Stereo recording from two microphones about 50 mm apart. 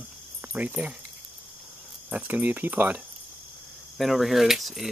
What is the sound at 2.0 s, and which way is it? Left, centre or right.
Speech, right.